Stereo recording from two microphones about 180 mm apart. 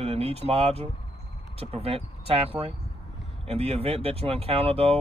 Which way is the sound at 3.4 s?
35° right (ahead or behind).